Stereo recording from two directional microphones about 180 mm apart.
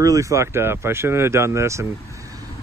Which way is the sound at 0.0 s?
20° right (ahead or behind).